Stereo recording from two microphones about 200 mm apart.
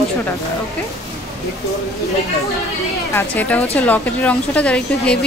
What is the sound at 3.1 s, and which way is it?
A woman's voice, 10° left (ahead or behind).